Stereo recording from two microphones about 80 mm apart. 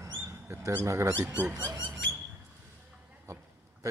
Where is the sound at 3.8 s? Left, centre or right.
Right.